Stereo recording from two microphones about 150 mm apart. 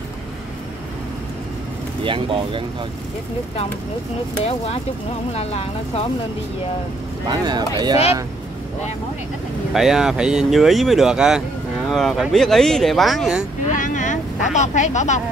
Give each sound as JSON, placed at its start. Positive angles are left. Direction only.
{"t": 2.0, "sound": "speech", "side_deg": -35}
{"t": 5.3, "sound": "speech", "side_deg": 45}
{"t": 7.2, "sound": "speech", "side_deg": -30}
{"t": 9.8, "sound": "speech", "side_deg": -5}
{"t": 13.7, "sound": "speech", "side_deg": 60}